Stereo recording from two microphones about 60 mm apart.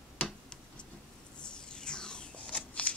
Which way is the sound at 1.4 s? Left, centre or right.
Centre.